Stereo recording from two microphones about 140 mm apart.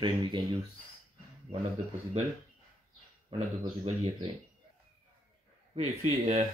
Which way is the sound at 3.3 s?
45° right (ahead or behind).